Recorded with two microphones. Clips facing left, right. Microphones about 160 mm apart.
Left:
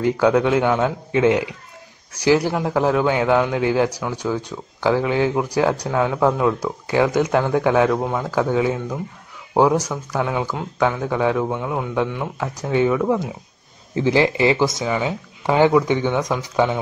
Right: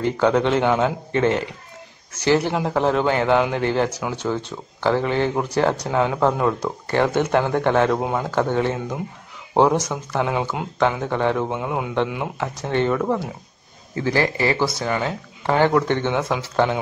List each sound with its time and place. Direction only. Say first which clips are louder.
0.0 s speech: left 2 dB; 10° left (ahead or behind)
8.0 s a man's voice: even; 5° right (ahead or behind)
8.3 s a man's voice: left 3 dB; 5° left (ahead or behind)
10.9 s a man's voice: left 1 dB; 5° left (ahead or behind)
12.5 s speech: left 3 dB; 10° left (ahead or behind)
13.9 s speech: left 4 dB; 15° left (ahead or behind)
14.9 s speech: left 1 dB; 5° left (ahead or behind)
16.1 s a man's voice: left 1 dB; 5° right (ahead or behind)